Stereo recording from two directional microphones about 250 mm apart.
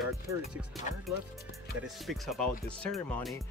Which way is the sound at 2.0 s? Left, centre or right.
Centre.